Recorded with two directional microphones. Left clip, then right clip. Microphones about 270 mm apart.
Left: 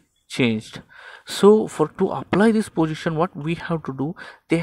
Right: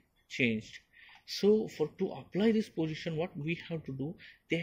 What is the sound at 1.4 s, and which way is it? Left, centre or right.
Speech, left.